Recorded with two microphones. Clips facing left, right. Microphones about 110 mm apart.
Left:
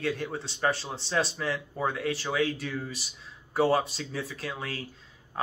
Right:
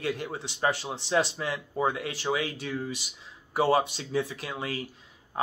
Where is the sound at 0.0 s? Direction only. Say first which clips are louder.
Left 1 dB; 15° right (ahead or behind).